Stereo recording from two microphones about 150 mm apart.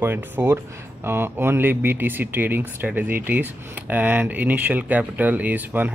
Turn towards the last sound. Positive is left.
turn(degrees=-10)  # may be behind; listen again after turning